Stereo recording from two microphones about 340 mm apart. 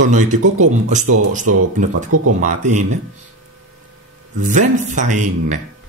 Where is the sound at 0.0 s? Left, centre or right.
Right.